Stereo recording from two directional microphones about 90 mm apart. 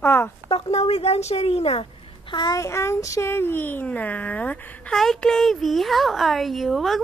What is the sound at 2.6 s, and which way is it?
Speech, 30° left (ahead or behind).